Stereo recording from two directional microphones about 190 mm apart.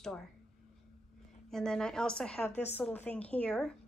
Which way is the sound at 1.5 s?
5° left (ahead or behind).